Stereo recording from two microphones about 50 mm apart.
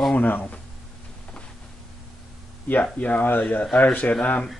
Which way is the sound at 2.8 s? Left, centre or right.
Left.